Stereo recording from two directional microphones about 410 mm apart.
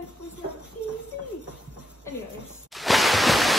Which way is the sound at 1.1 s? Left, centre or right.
Right.